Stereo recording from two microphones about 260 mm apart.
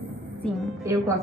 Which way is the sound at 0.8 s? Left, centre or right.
Centre.